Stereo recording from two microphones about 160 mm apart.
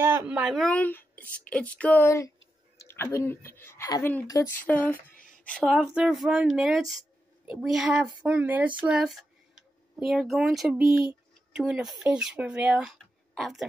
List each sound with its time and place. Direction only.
0.0 s a woman's voice: 20° right (ahead or behind)
0.3 s speech: 5° right (ahead or behind)
0.7 s a woman's voice: 10° left (ahead or behind)
5.1 s a sound: 55° left (ahead or behind)
5.4 s speech: 5° left (ahead or behind)
5.7 s speech: 5° right (ahead or behind)